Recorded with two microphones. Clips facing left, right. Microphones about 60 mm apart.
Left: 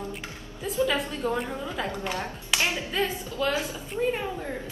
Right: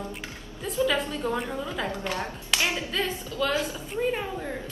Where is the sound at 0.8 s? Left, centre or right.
Centre.